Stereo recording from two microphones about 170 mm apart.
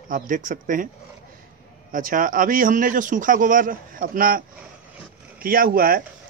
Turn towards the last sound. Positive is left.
turn(degrees=-55)  # may be behind; listen again after turning